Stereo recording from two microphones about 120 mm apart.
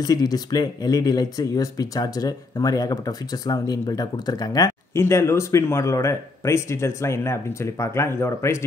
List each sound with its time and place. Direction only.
0.0 s speech: 35° left (ahead or behind)